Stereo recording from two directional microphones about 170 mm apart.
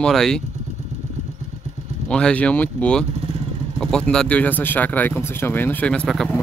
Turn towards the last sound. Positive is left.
turn(degrees=0)  # may be behind; listen again after turning